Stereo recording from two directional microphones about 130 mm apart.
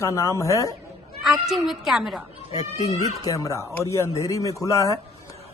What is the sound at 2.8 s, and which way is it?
Speech, 25° left (ahead or behind).